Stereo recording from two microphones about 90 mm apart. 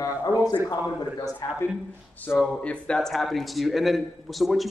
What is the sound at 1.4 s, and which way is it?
Speech, 40° left (ahead or behind).